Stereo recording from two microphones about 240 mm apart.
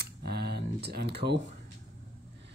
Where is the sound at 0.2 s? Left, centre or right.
Right.